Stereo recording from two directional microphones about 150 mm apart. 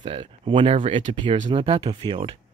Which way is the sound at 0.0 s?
35° right (ahead or behind).